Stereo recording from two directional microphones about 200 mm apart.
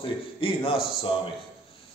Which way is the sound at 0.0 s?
25° left (ahead or behind).